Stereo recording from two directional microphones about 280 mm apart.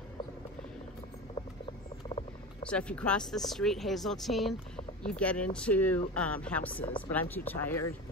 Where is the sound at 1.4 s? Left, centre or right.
Left.